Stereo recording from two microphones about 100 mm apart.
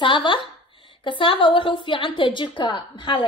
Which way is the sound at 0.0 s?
55° left (ahead or behind).